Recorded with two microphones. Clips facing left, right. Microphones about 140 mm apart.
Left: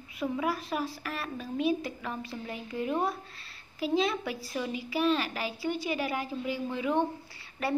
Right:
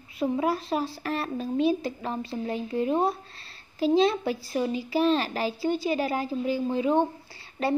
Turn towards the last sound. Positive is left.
turn(degrees=-25)  # may be behind; listen again after turning